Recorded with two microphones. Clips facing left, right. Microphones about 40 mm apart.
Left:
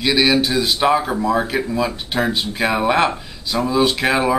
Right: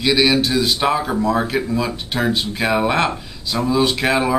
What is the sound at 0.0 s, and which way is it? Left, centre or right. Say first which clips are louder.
Speech: even; centre.